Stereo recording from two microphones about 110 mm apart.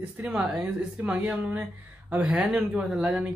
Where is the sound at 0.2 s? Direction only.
15° right (ahead or behind).